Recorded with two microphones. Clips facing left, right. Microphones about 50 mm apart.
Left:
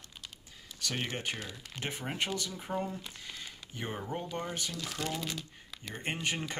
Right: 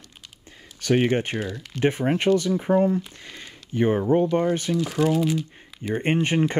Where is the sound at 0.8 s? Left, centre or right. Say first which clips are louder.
Right 15 dB; right.